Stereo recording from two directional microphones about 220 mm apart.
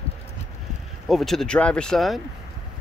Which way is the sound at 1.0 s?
Centre (ahead or behind).